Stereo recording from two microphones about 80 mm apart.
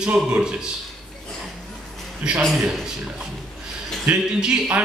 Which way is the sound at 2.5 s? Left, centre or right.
Centre.